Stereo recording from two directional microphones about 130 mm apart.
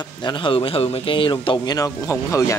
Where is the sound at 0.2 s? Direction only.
35° left (ahead or behind).